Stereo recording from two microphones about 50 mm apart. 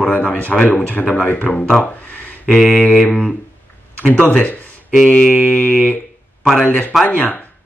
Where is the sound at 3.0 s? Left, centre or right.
Centre.